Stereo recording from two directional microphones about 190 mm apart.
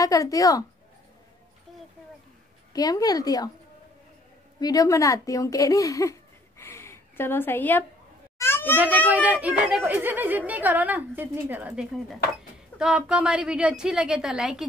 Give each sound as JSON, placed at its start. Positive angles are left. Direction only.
{"t": 0.0, "sound": "speech", "side_deg": 15}
{"t": 2.7, "sound": "speech", "side_deg": 20}
{"t": 4.6, "sound": "speech", "side_deg": 20}
{"t": 6.6, "sound": "a sound", "side_deg": 15}
{"t": 8.7, "sound": "a woman's voice", "side_deg": -10}